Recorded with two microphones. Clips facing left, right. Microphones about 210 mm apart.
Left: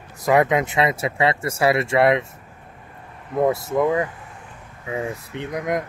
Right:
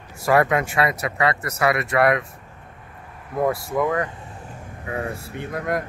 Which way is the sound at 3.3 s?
20° left (ahead or behind).